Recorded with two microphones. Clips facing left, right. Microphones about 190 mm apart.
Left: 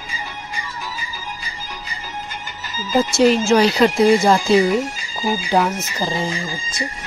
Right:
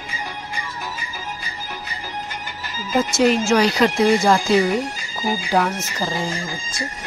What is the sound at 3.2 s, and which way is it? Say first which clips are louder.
Speech: left 3 dB; 30° left (ahead or behind).